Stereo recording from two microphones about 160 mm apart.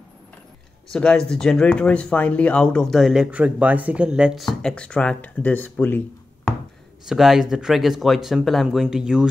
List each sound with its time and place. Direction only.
0.9 s speech: 5° left (ahead or behind)
7.1 s speech: centre (ahead or behind)